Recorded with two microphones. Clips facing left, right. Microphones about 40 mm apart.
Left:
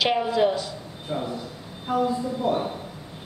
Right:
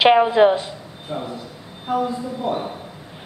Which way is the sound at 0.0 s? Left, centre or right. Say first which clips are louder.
Right 8 dB; right.